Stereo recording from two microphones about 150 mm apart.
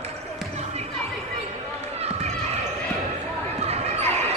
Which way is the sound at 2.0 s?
45° right (ahead or behind).